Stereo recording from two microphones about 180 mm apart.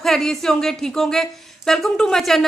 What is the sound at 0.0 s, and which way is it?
Speech, centre (ahead or behind).